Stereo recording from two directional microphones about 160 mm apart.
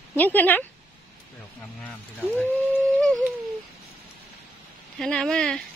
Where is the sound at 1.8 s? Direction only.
10° left (ahead or behind).